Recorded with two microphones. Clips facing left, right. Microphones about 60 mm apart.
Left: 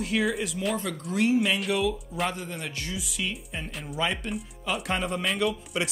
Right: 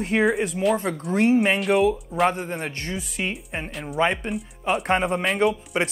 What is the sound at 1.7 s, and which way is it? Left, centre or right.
Speech, right.